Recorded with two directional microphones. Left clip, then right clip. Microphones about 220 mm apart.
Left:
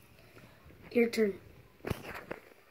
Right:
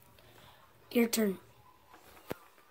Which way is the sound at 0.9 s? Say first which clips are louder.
Left 2 dB; 50° right (ahead or behind).